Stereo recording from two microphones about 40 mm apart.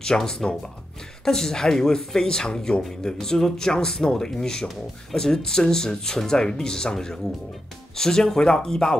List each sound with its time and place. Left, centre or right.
0.0 s speech: centre